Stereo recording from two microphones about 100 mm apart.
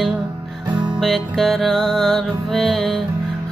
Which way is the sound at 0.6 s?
50° right (ahead or behind).